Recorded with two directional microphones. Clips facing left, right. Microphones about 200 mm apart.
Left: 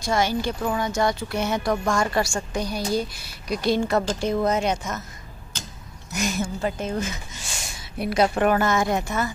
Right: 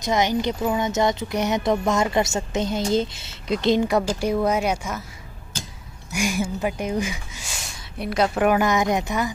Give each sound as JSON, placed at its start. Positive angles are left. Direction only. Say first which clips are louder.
{"t": 0.0, "sound": "a woman's voice", "louder": "right 2 dB", "side_deg": -20}
{"t": 6.1, "sound": "speech", "louder": "right 2 dB", "side_deg": -10}
{"t": 8.0, "sound": "a woman's voice", "louder": "left 1 dB", "side_deg": 0}
{"t": 8.5, "sound": "speech", "louder": "right 1 dB", "side_deg": -15}